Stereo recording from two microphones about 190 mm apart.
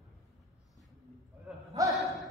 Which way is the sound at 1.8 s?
20° right (ahead or behind).